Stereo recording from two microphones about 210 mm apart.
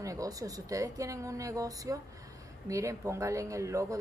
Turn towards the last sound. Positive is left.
turn(degrees=-15)  # may be behind; listen again after turning